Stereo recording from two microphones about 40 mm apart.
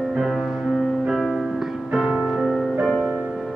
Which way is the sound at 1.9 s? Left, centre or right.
Right.